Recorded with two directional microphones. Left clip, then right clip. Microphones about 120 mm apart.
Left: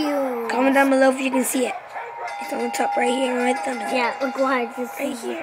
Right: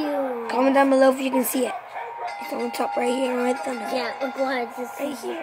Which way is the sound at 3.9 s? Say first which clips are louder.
Left 6 dB; 25° left (ahead or behind).